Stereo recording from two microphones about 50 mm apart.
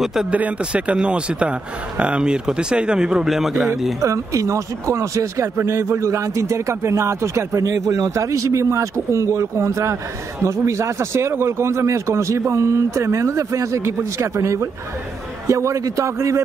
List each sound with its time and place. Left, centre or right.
0.0 s speech: centre
0.3 s a man's voice: right; by 3.9 s centre
4.0 s a man's voice: right